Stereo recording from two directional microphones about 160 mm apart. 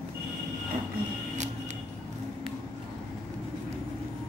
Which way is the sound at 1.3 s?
45° right (ahead or behind).